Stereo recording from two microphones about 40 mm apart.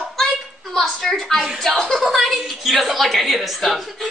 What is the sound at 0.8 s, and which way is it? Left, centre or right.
Speech, centre.